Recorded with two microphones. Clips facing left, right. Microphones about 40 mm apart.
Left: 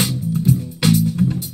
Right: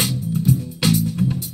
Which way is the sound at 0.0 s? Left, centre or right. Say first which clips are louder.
Left 2 dB; left.